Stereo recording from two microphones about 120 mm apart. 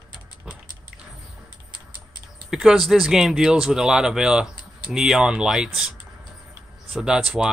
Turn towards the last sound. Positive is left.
turn(degrees=-5)  # may be behind; listen again after turning